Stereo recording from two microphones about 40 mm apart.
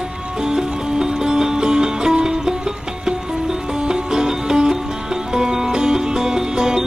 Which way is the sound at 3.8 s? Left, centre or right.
Centre.